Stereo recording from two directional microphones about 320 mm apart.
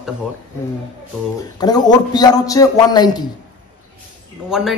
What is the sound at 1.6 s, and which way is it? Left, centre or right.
A man's voice, centre.